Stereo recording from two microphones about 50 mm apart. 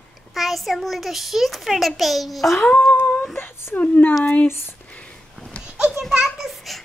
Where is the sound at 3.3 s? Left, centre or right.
Left.